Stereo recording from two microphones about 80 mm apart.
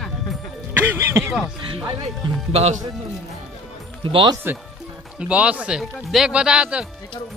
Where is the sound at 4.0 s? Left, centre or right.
Right.